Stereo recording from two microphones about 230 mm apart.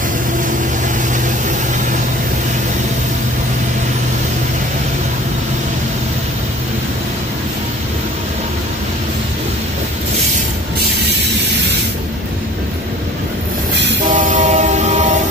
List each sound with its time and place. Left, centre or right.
14.1 s train: right